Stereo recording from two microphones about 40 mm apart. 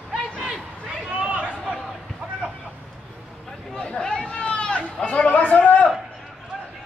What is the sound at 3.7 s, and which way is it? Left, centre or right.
Chatter, centre.